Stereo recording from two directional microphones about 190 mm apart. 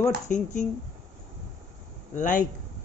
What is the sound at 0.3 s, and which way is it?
Speech, 40° left (ahead or behind).